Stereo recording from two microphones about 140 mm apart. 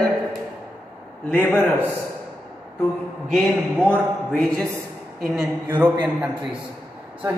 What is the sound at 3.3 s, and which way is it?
A man's voice, 5° left (ahead or behind).